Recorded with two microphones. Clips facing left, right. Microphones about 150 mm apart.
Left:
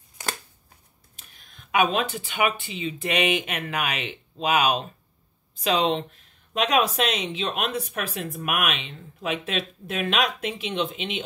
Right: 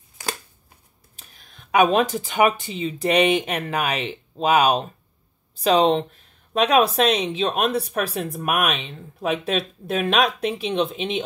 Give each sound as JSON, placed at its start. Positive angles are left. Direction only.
{"t": 1.1, "sound": "speech", "side_deg": -35}